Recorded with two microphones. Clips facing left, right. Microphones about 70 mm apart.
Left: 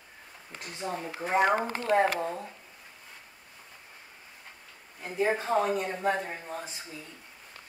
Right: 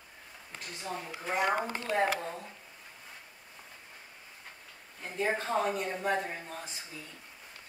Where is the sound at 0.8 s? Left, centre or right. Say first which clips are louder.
Left 4 dB; left.